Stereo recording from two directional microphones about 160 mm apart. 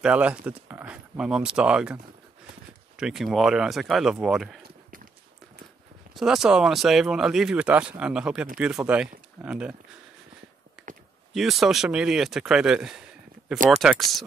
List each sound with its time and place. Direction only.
0.0 s speech: 10° right (ahead or behind)
3.0 s speech: centre (ahead or behind)
6.1 s speech: 5° right (ahead or behind)
10.8 s a sound: centre (ahead or behind)
11.3 s speech: centre (ahead or behind)